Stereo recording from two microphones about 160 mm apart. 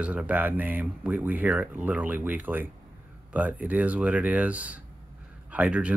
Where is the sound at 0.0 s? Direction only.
10° right (ahead or behind).